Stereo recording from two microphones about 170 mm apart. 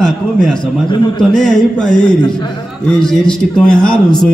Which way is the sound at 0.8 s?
25° left (ahead or behind).